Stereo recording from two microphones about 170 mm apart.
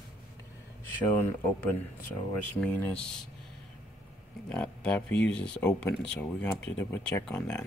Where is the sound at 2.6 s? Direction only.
5° left (ahead or behind).